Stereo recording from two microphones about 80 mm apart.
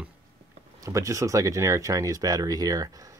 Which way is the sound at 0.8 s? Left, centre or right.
Right.